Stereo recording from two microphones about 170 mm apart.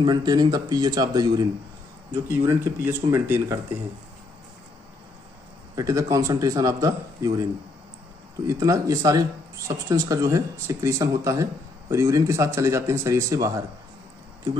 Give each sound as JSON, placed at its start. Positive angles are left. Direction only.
{"t": 0.0, "sound": "a man's voice", "side_deg": -25}
{"t": 2.2, "sound": "speech", "side_deg": -15}
{"t": 5.8, "sound": "a man's voice", "side_deg": -20}
{"t": 8.5, "sound": "a man's voice", "side_deg": -20}